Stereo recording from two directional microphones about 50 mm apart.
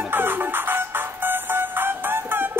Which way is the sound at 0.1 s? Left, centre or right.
Right.